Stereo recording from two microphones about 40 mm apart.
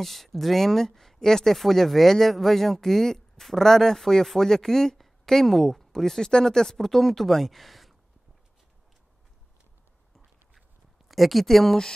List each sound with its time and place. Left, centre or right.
0.0 s speech: centre
11.1 s speech: centre